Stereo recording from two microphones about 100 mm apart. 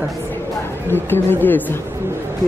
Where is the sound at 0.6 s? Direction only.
20° left (ahead or behind).